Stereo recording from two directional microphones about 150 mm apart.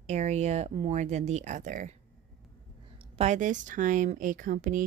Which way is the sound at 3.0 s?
50° right (ahead or behind).